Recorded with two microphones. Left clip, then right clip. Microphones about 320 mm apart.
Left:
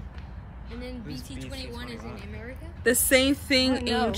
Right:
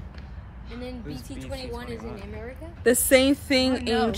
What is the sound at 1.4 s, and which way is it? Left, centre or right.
Speech, centre.